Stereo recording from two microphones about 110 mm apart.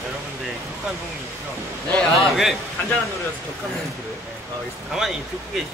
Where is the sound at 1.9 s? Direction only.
Centre (ahead or behind).